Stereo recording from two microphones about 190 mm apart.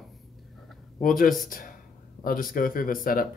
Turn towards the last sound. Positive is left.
turn(degrees=45)  # may be behind; listen again after turning